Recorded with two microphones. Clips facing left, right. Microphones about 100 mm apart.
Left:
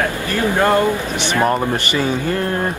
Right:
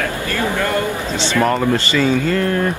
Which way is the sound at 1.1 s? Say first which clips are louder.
Even; 15° left (ahead or behind).